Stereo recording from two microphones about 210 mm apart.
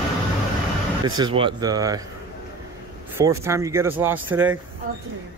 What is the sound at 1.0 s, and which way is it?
Speech, 20° right (ahead or behind).